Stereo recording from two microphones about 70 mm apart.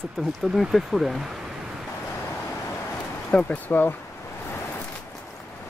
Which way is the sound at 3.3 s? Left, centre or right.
Left.